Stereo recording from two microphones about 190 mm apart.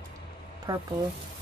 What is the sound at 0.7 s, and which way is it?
Speech, 20° right (ahead or behind).